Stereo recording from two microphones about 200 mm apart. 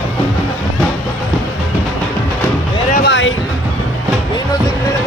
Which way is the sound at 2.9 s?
55° left (ahead or behind).